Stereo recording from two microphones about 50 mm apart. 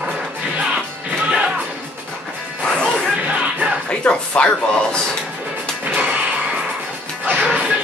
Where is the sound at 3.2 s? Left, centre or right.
Right.